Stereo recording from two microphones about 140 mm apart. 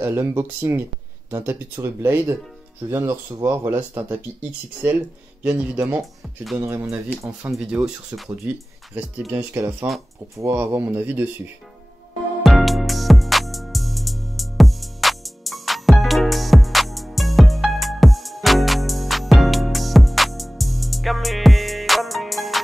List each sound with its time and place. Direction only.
0.0 s speech: 20° right (ahead or behind)
9.3 s speech: 15° right (ahead or behind)
12.4 s music: centre (ahead or behind)